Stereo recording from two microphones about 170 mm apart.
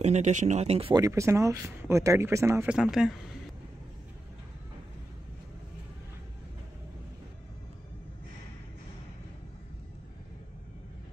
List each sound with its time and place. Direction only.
0.0 s speech: 45° right (ahead or behind)
0.9 s speech: 20° right (ahead or behind); by 3.2 s centre (ahead or behind)